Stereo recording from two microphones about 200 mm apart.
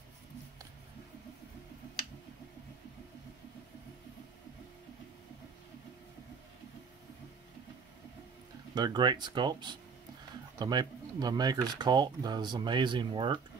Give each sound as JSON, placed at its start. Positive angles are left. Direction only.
{"t": 8.7, "sound": "speech", "side_deg": -20}